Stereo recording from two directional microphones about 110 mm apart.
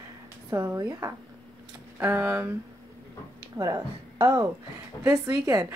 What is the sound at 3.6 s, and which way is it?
A woman's voice, 35° right (ahead or behind).